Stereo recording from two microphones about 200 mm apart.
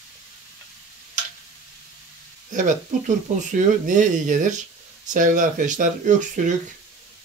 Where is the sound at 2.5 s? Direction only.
40° right (ahead or behind).